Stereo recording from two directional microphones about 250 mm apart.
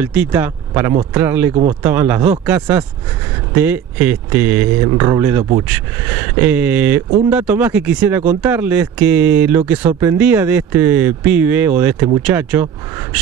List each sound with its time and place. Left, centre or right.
0.0 s speech: centre
1.5 s speech: right
1.8 s speech: centre